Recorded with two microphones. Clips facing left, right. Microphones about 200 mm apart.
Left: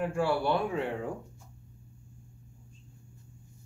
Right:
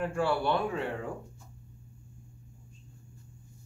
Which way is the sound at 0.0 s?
10° left (ahead or behind).